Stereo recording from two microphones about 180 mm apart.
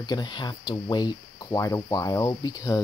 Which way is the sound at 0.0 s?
25° left (ahead or behind).